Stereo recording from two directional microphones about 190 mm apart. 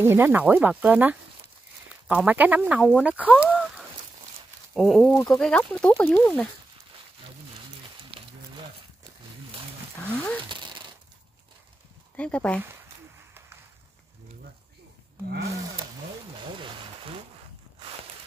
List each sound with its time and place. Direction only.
0.0 s speech: 10° right (ahead or behind)
3.4 s a sound: 5° right (ahead or behind)
4.7 s speech: centre (ahead or behind)
8.1 s a sound: 30° right (ahead or behind)
10.0 s wild animals: 10° left (ahead or behind)
10.5 s a sound: 25° right (ahead or behind)
12.2 s speech: 5° left (ahead or behind)
15.2 s speech: 55° right (ahead or behind)
16.5 s rain on surface: 25° right (ahead or behind)